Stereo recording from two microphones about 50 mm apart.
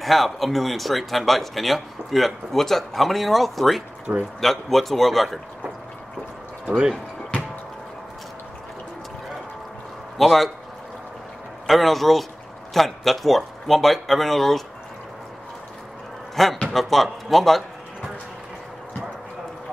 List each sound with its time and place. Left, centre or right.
0.0 s speech: centre
6.6 s speech: centre
10.1 s speech: centre
11.6 s speech: centre
16.4 s speech: centre